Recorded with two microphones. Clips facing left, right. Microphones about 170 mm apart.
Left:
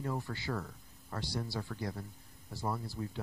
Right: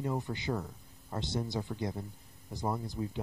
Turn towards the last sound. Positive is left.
turn(degrees=-20)  # may be behind; listen again after turning